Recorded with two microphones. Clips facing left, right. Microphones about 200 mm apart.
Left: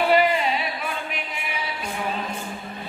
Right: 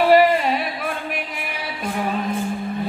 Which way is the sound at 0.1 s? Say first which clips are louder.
Right 5 dB; 50° right (ahead or behind).